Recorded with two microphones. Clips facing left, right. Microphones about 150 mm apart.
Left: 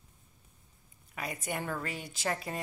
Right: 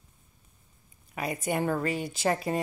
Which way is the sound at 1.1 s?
25° right (ahead or behind).